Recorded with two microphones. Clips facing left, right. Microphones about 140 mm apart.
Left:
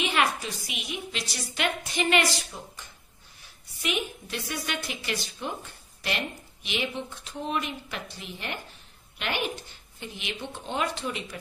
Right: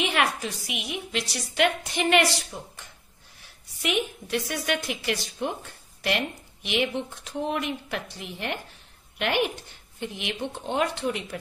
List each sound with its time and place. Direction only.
0.0 s a woman's voice: 65° right (ahead or behind)
3.8 s a woman's voice: 65° right (ahead or behind)